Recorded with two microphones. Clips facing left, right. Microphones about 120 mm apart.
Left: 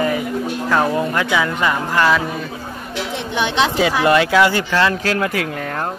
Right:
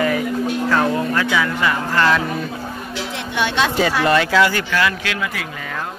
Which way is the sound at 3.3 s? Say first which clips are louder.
Left 1 dB; 20° left (ahead or behind).